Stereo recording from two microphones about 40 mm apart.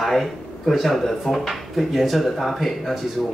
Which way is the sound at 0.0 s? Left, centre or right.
Centre.